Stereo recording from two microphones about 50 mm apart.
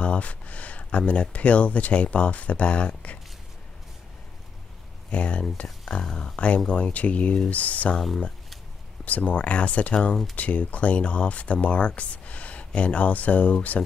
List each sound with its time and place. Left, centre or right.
0.0 s speech: left
5.1 s speech: left
6.3 s speech: left
9.0 s speech: left